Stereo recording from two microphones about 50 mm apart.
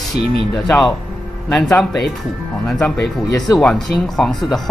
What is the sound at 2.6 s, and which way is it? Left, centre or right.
Speech, centre.